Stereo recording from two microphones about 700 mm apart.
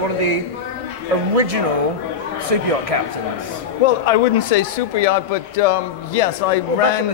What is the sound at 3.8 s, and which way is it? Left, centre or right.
A man's voice, left.